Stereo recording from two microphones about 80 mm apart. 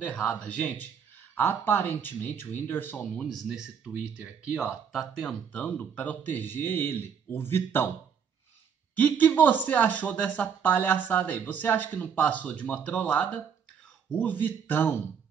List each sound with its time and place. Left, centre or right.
0.0 s speech: centre
3.4 s speech: centre
4.9 s speech: centre
5.5 s speech: centre
8.9 s speech: left